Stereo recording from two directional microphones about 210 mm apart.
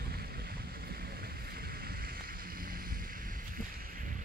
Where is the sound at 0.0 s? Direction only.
45° right (ahead or behind).